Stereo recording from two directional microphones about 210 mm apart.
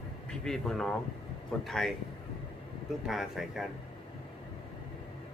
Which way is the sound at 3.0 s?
Centre (ahead or behind).